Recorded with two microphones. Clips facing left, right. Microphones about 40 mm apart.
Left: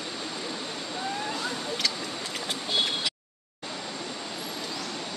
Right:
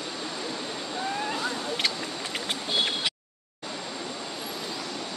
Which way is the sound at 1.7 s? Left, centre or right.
Right.